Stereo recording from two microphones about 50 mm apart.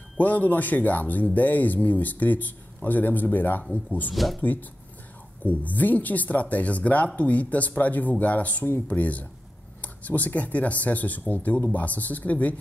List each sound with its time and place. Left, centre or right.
0.2 s speech: left
4.1 s speech: centre
4.4 s speech: left